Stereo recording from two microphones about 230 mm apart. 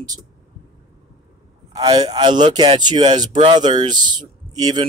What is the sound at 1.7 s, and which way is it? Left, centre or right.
A man's voice, centre.